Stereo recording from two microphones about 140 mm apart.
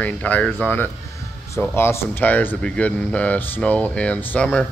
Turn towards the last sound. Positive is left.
turn(degrees=10)  # may be behind; listen again after turning